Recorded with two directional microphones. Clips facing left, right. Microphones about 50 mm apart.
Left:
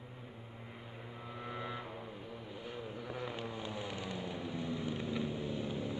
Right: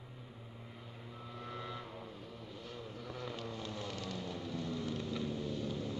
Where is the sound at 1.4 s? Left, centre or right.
Left.